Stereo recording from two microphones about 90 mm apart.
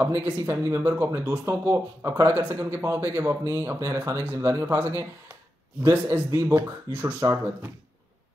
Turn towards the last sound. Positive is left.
turn(degrees=-30)  # may be behind; listen again after turning